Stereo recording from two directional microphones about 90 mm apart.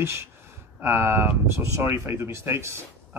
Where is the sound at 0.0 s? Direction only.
30° right (ahead or behind).